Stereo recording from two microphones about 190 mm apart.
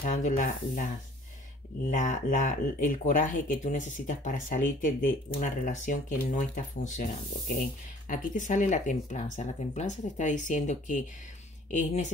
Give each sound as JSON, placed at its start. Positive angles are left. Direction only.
{"t": 0.0, "sound": "speech", "side_deg": 40}
{"t": 1.9, "sound": "speech", "side_deg": 45}